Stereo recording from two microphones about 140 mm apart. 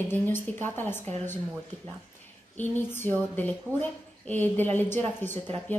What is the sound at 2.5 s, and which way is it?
A woman's voice, 15° left (ahead or behind).